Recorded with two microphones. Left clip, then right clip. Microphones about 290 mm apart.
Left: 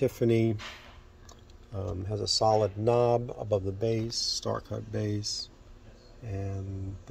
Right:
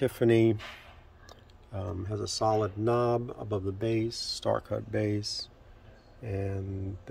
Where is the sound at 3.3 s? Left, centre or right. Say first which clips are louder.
Left 4 dB; right.